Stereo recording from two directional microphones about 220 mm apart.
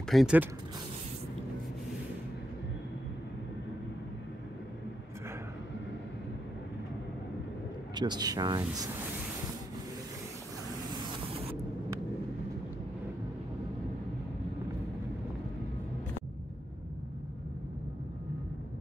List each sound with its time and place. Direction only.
0.1 s speech: 5° right (ahead or behind)
7.9 s speech: 20° right (ahead or behind)